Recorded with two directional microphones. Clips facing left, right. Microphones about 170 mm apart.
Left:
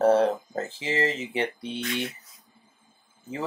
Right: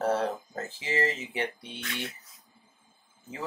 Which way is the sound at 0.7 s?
25° left (ahead or behind).